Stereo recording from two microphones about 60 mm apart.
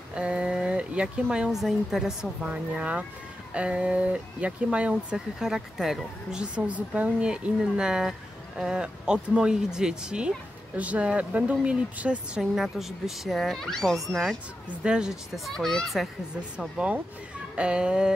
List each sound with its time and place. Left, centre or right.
0.1 s a sound: centre
1.3 s speech: centre
2.4 s a woman's voice: right
6.4 s a woman's voice: centre
12.4 s speech: centre
13.6 s speech: centre
14.8 s speech: centre
15.3 s speech: centre
16.3 s a woman's voice: centre